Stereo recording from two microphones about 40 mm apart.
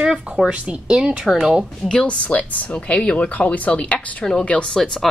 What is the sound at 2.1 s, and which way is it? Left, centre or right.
A woman's voice, left.